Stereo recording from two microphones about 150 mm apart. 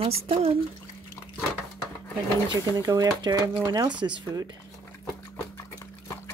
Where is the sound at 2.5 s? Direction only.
25° right (ahead or behind).